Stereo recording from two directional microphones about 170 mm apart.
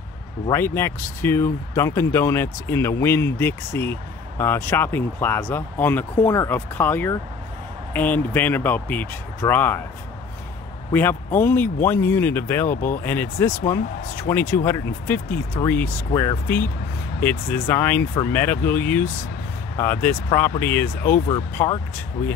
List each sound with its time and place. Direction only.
0.5 s speech: 15° left (ahead or behind)
10.9 s speech: 10° left (ahead or behind)